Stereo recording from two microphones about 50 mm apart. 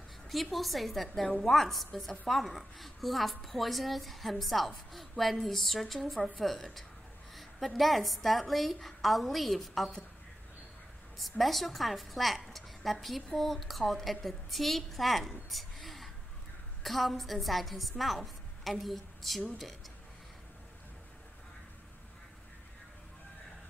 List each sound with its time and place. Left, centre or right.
0.3 s a woman's voice: centre
11.1 s a woman's voice: centre